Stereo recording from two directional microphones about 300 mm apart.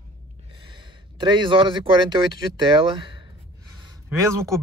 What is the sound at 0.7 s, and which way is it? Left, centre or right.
Speech, centre.